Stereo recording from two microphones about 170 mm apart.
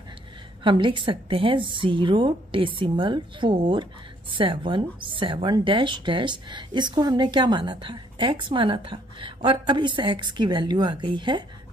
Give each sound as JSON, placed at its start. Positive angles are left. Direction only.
{"t": 0.7, "sound": "a woman's voice", "side_deg": -30}